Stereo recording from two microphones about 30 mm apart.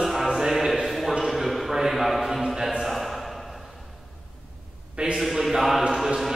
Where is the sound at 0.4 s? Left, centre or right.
Centre.